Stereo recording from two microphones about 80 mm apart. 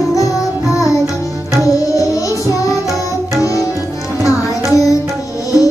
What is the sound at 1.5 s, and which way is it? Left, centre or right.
Tabla, left.